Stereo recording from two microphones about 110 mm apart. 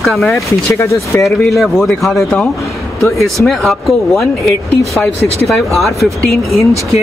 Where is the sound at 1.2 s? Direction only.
Centre (ahead or behind).